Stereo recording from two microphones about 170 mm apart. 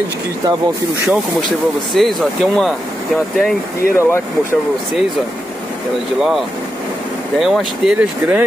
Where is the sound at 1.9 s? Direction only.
Centre (ahead or behind).